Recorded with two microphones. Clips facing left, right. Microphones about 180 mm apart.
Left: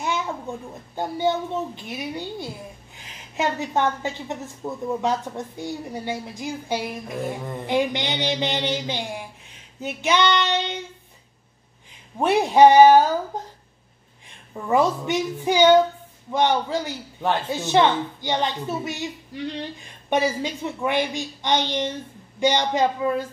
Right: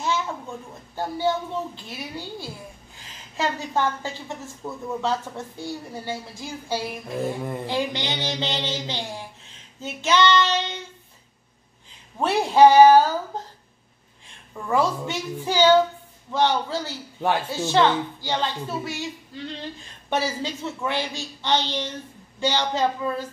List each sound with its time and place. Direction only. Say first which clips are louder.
0.0 s a sound: even; 15° left (ahead or behind)
0.9 s a woman's voice: left 1 dB; 20° left (ahead or behind)
12.2 s a woman's voice: left 1 dB; 20° left (ahead or behind)
14.5 s a woman's voice: left 3 dB; 20° left (ahead or behind)